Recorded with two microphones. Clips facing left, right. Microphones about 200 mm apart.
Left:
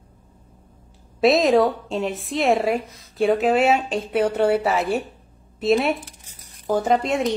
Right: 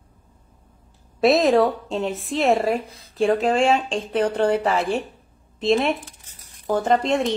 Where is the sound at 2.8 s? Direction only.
30° right (ahead or behind).